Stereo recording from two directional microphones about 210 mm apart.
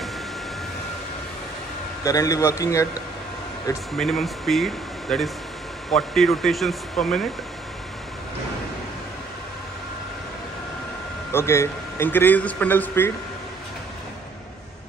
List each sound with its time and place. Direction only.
2.0 s a man's voice: 15° left (ahead or behind)
3.9 s speech: centre (ahead or behind)
11.3 s a man's voice: 10° left (ahead or behind)